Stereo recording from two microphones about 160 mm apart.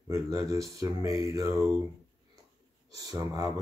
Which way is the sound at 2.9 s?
25° right (ahead or behind).